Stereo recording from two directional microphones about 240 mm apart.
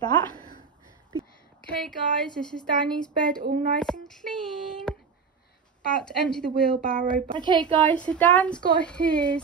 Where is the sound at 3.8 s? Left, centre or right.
Centre.